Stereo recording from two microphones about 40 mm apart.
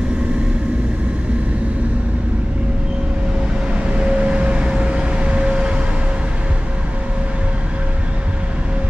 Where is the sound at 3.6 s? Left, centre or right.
Right.